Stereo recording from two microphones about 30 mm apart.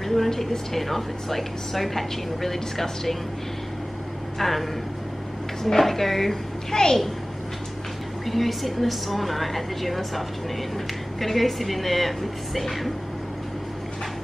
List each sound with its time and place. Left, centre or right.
0.1 s a woman's voice: centre
4.4 s a woman's voice: centre
6.7 s a child's voice: centre
8.3 s a woman's voice: centre